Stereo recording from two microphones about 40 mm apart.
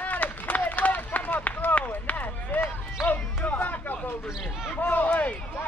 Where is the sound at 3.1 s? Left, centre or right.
Left.